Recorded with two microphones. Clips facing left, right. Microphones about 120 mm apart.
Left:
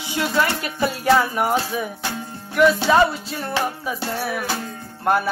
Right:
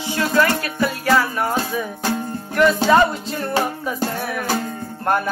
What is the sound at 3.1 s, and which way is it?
Speech, 5° left (ahead or behind).